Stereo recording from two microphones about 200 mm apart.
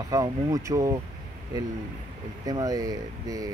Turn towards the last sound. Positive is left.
turn(degrees=-20)  # may be behind; listen again after turning